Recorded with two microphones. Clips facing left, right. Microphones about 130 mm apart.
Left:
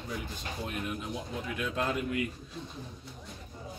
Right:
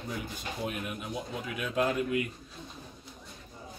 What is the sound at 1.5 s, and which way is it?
Speech, 10° right (ahead or behind).